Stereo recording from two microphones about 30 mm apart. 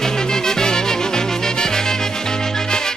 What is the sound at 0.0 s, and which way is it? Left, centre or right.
Music, left.